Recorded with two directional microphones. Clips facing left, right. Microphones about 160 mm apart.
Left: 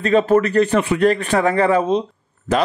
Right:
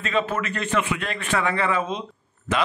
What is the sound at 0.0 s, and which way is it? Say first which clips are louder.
A man's voice: left 10 dB; 40° left (ahead or behind).